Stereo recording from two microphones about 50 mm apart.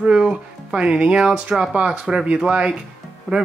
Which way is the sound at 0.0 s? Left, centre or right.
Centre.